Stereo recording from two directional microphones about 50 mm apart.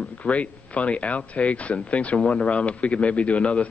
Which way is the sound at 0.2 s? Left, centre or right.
Left.